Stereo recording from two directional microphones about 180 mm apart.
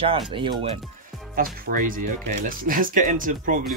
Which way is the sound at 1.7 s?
50° right (ahead or behind).